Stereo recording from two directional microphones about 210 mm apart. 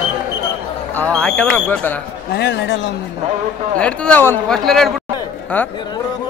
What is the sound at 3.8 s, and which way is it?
Speech, 5° left (ahead or behind).